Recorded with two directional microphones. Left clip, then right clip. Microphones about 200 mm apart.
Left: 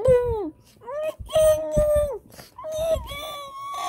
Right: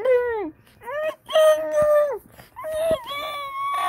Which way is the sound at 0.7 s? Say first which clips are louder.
Right 2 dB; 5° right (ahead or behind).